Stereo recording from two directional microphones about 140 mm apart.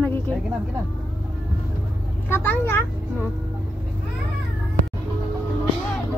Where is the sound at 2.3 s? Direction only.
15° left (ahead or behind).